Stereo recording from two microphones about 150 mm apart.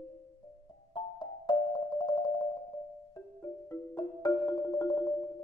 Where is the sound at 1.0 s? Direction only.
30° left (ahead or behind).